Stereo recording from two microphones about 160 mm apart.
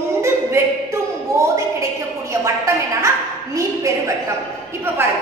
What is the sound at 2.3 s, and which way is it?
Speech, 20° right (ahead or behind).